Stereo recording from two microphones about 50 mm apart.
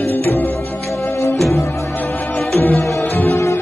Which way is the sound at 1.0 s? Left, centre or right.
Left.